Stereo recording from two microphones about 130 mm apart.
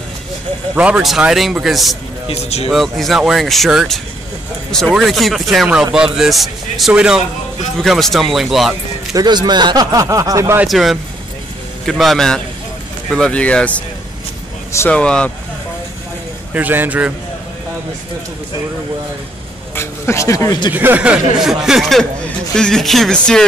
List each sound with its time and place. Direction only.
0.7 s speech: 10° right (ahead or behind)
2.2 s speech: 55° left (ahead or behind)
2.7 s speech: centre (ahead or behind)
9.1 s speech: 35° right (ahead or behind)
10.7 s speech: centre (ahead or behind)
14.9 s speech: 10° left (ahead or behind)
16.5 s speech: 15° right (ahead or behind)
19.7 s speech: 20° left (ahead or behind)
20.7 s speech: 15° right (ahead or behind); by 23.4 s 5° left (ahead or behind)